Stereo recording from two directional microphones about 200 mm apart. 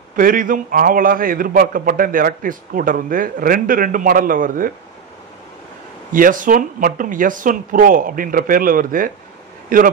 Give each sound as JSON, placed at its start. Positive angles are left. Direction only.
{"t": 0.1, "sound": "a man's voice", "side_deg": -45}
{"t": 6.1, "sound": "a man's voice", "side_deg": -45}